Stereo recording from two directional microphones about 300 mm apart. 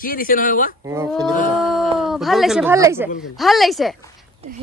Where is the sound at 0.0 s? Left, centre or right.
Left.